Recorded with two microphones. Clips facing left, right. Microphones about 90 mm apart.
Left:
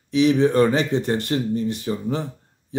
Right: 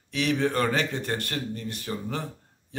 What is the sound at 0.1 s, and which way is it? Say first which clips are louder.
A man's voice: left 8 dB; 15° left (ahead or behind).